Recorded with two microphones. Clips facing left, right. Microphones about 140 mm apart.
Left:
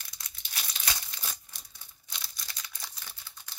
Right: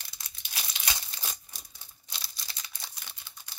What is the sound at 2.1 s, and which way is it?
Crumpling, 30° right (ahead or behind).